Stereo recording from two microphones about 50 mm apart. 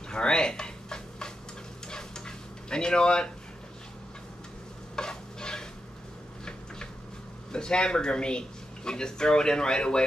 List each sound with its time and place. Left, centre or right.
0.1 s a sound: centre
4.9 s stir: centre
7.5 s speech: centre